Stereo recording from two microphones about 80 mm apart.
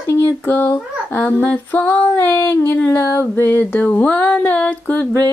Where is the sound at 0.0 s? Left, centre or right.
Left.